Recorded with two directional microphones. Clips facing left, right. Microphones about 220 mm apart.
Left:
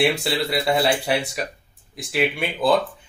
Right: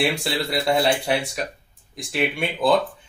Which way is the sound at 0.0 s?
Centre (ahead or behind).